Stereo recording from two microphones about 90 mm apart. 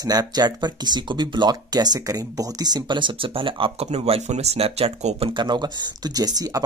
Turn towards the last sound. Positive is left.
turn(degrees=-45)  # may be behind; listen again after turning